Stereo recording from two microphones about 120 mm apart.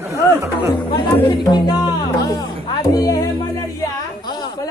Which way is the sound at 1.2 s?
40° left (ahead or behind).